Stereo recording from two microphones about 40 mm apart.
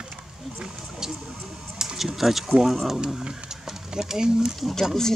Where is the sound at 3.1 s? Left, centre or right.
Centre.